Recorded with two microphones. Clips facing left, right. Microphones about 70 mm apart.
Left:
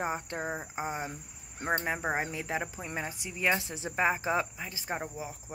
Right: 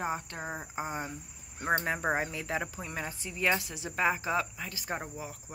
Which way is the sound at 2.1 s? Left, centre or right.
Left.